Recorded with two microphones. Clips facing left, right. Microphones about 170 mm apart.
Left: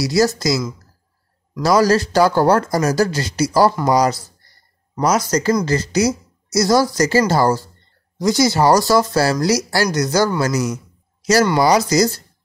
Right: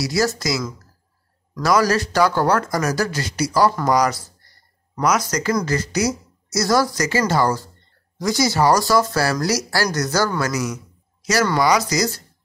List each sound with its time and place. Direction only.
0.0 s speech: 25° left (ahead or behind)
1.6 s speech: 30° left (ahead or behind)
10.4 s a man's voice: 30° left (ahead or behind)